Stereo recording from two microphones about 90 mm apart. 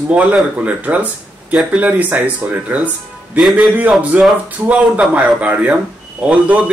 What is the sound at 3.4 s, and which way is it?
Speech, centre (ahead or behind).